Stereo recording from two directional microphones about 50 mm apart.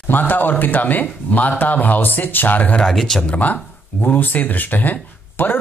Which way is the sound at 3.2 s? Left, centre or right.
Left.